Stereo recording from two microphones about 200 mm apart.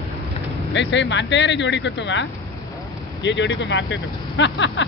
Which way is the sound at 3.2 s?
60° left (ahead or behind).